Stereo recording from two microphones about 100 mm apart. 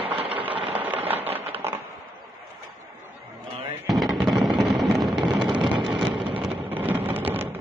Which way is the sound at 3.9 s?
Centre (ahead or behind).